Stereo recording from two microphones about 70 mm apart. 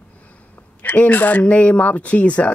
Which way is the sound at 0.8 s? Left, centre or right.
Left.